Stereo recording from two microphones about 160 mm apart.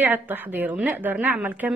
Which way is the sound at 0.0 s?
10° right (ahead or behind).